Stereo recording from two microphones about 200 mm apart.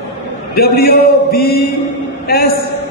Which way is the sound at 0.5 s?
50° left (ahead or behind).